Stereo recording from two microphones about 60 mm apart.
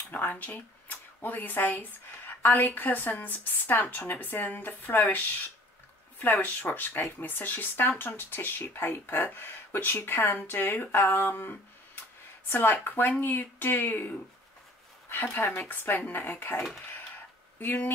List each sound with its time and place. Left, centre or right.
0.1 s speech: left
15.3 s speech: left